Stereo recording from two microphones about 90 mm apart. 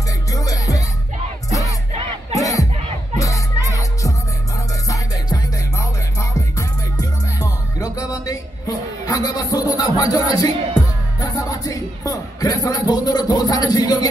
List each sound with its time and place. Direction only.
0.3 s music: 40° left (ahead or behind)
2.3 s music: 40° left (ahead or behind)